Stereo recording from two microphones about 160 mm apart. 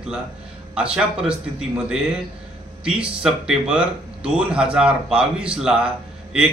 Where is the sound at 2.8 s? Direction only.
5° right (ahead or behind).